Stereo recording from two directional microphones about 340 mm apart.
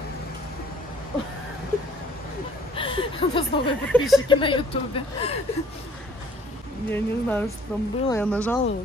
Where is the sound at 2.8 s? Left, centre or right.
Centre.